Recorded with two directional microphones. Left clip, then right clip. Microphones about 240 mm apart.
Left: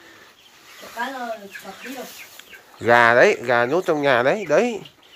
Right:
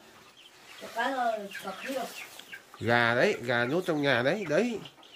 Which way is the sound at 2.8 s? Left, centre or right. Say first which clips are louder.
Left 11 dB; centre.